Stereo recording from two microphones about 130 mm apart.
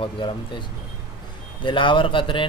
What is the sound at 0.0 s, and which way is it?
Speech, 40° left (ahead or behind).